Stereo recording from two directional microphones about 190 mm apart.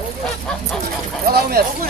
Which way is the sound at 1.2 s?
55° right (ahead or behind).